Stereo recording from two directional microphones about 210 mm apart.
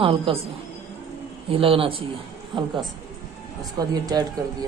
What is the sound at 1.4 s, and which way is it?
A woman's voice, 25° right (ahead or behind).